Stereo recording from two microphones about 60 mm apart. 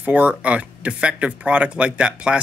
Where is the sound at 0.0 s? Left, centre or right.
Right.